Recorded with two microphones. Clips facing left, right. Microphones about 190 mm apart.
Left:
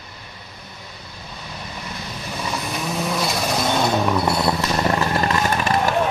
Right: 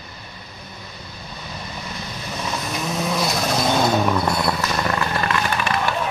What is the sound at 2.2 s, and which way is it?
Vehicle, 5° left (ahead or behind).